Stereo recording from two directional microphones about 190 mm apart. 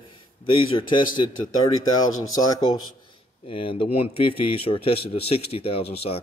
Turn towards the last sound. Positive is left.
turn(degrees=30)  # may be behind; listen again after turning